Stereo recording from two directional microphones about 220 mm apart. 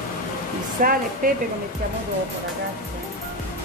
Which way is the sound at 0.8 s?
40° right (ahead or behind).